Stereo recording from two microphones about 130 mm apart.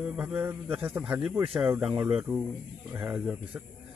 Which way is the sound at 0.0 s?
10° right (ahead or behind).